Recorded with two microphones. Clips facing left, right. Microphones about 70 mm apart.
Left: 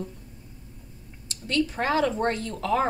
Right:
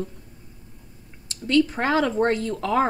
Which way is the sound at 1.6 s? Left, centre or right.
Right.